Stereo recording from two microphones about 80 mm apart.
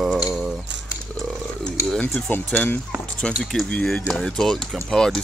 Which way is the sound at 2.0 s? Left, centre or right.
Left.